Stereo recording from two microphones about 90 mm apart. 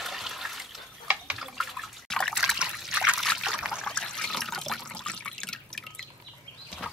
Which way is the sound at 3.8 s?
10° left (ahead or behind).